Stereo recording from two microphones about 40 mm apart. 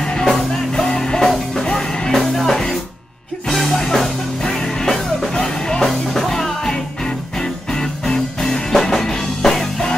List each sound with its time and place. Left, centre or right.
0.0 s music: centre
5.9 s music: centre